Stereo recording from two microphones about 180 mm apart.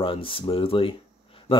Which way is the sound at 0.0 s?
30° left (ahead or behind).